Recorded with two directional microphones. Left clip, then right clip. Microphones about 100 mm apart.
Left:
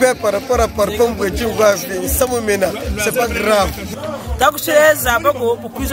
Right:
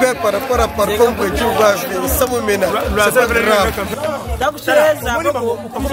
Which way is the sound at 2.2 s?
Centre (ahead or behind).